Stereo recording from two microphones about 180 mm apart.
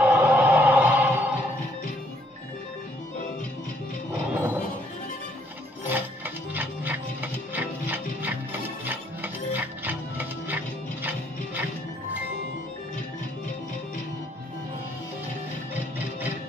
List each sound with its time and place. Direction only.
0.0 s music: 10° right (ahead or behind)
4.3 s a sound: 10° right (ahead or behind)
5.9 s music: 10° right (ahead or behind)